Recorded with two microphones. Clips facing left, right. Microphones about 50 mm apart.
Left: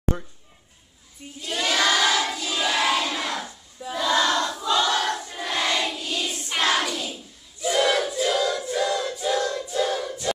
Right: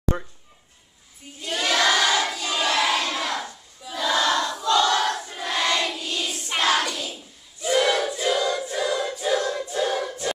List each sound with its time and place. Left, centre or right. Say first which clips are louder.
0.1 s speech: right 3 dB; right
1.4 s crowd: right 1 dB; centre
4.0 s battle cry: even; centre
4.6 s crowd: right 2 dB; centre
5.2 s choir: right 1 dB; centre
5.9 s hands: even; centre
7.6 s battle cry: even; centre
8.1 s choir: even; centre
9.8 s choir: left 1 dB; centre